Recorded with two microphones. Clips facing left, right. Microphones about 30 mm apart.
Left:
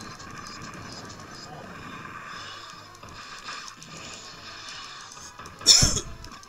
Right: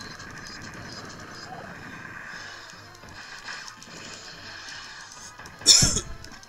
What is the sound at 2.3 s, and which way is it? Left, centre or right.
Music, left.